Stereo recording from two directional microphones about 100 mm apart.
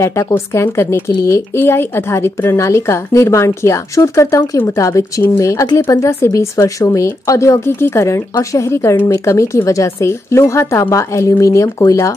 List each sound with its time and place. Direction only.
0.0 s speech: 30° left (ahead or behind)